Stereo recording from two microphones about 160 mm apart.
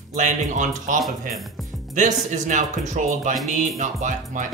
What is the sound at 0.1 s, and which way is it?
Speech, 50° right (ahead or behind).